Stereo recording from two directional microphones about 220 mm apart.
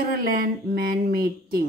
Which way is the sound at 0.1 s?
45° right (ahead or behind).